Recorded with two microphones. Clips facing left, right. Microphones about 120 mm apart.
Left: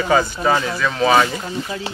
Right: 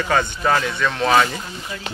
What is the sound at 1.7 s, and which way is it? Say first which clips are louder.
Speech: left 4 dB; 35° left (ahead or behind).